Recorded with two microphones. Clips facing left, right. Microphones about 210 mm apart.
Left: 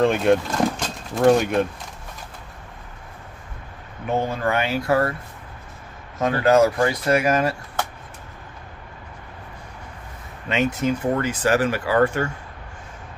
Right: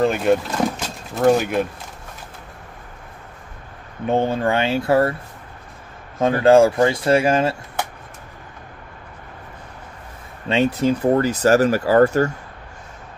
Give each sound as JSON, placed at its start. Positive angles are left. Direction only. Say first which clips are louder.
{"t": 0.0, "sound": "speech", "louder": "even", "side_deg": 0}
{"t": 4.1, "sound": "speech", "louder": "right 4 dB", "side_deg": -25}
{"t": 6.4, "sound": "speech", "louder": "right 4 dB", "side_deg": -30}
{"t": 10.5, "sound": "speech", "louder": "right 4 dB", "side_deg": -30}